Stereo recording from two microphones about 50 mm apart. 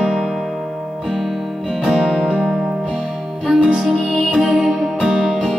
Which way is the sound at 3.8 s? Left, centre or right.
Centre.